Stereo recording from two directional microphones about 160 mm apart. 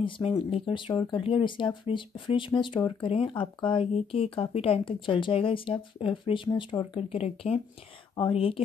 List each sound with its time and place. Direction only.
0.5 s speech: 35° left (ahead or behind)